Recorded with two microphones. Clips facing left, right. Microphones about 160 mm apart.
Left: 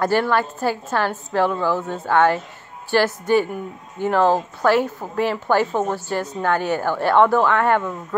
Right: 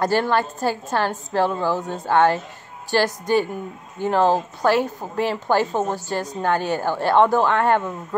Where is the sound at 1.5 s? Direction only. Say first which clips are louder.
Left 1 dB; 15° right (ahead or behind).